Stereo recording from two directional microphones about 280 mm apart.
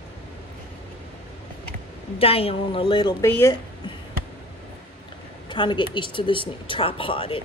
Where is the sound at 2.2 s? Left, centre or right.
Left.